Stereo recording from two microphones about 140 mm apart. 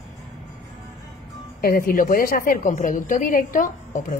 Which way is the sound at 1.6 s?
90° left.